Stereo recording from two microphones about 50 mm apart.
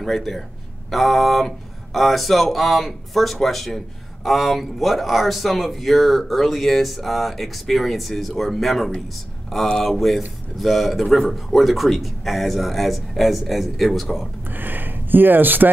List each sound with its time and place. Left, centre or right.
0.0 s speech: centre
14.6 s speech: right